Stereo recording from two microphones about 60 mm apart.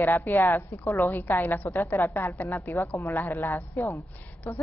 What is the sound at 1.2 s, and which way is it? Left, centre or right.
Speech, left.